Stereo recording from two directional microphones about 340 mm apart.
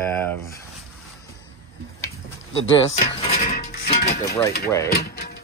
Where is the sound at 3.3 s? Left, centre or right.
Left.